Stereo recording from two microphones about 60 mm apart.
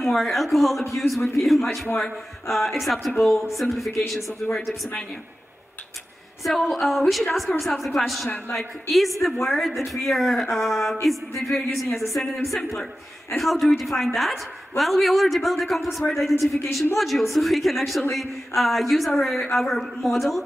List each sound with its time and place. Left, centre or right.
0.0 s speech: centre
4.4 s speech: centre
6.4 s speech: centre
13.4 s speech: centre